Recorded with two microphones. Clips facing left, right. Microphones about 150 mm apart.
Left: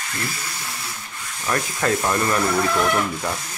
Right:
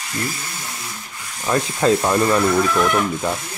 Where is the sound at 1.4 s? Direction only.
20° right (ahead or behind).